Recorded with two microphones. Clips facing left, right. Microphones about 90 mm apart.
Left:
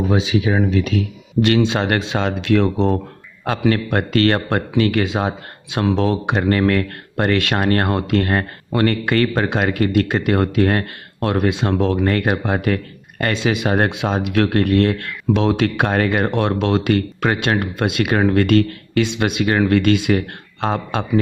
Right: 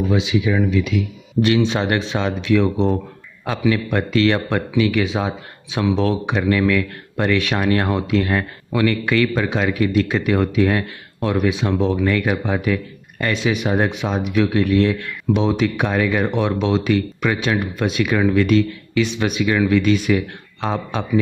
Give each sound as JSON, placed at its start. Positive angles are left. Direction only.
{"t": 0.1, "sound": "speech", "side_deg": 40}
{"t": 1.4, "sound": "a man's voice", "side_deg": 5}
{"t": 1.8, "sound": "speech", "side_deg": 55}